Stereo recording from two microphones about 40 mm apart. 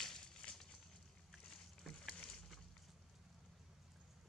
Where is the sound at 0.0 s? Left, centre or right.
Centre.